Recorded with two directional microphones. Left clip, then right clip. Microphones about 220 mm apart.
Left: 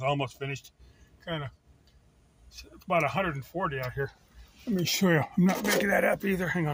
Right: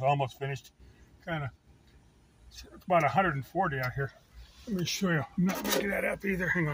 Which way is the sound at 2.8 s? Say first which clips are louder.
Right 2 dB; 25° left (ahead or behind).